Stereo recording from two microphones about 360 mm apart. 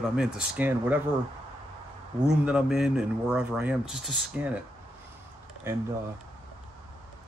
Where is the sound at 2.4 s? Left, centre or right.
Centre.